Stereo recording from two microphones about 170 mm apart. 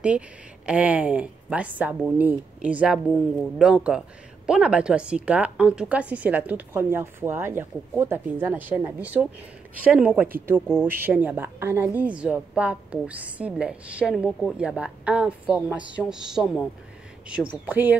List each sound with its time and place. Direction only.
0.7 s a woman's voice: 5° right (ahead or behind)
10.2 s speech: 60° right (ahead or behind)
10.9 s a woman's voice: 10° right (ahead or behind)
17.6 s a woman's voice: 10° right (ahead or behind)